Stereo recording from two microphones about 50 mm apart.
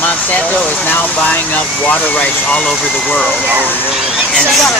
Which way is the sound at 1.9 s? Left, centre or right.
Left.